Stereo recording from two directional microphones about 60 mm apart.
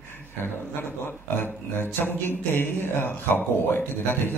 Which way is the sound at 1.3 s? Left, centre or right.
Left.